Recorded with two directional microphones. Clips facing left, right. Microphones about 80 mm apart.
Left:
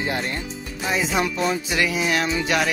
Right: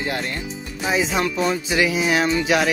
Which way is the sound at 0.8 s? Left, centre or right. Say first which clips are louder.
Right 2 dB; centre.